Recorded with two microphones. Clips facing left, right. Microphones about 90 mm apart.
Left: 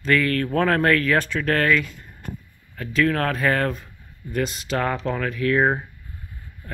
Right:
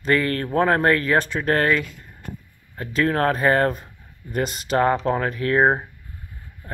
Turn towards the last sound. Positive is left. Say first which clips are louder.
# right 2 dB
turn(degrees=-30)  # may be behind; listen again after turning